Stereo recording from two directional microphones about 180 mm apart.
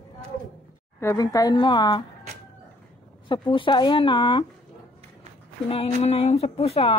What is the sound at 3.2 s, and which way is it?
Speech, 30° left (ahead or behind).